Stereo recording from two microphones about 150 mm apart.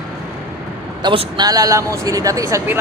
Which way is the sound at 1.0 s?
30° right (ahead or behind).